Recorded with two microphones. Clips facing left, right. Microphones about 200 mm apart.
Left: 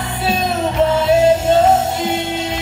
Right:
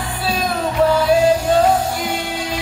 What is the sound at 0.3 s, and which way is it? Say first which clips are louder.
Music: left 2 dB; 25° left (ahead or behind).